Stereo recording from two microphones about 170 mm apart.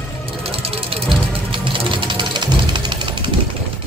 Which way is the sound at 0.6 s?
35° right (ahead or behind).